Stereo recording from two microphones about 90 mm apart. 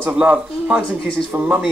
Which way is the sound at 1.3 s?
20° right (ahead or behind).